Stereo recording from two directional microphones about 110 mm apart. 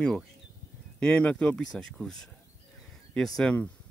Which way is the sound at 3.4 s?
10° left (ahead or behind).